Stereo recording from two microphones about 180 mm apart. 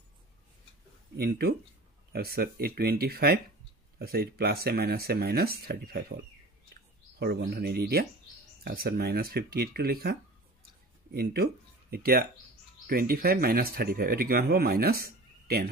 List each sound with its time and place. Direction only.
1.1 s speech: 60° right (ahead or behind)
7.2 s speech: 65° right (ahead or behind)
11.1 s speech: 60° right (ahead or behind)